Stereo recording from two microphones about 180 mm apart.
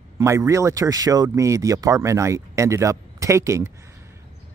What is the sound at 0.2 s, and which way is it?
Speech, 15° right (ahead or behind).